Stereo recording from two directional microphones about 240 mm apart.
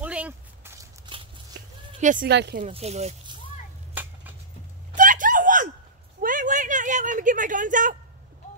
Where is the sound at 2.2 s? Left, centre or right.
Right.